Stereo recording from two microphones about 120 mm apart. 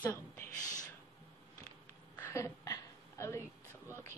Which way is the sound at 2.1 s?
25° left (ahead or behind).